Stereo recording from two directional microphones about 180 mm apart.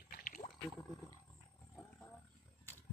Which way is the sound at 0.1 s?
50° left (ahead or behind).